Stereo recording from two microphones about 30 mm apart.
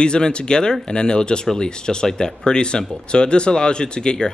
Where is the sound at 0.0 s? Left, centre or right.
Left.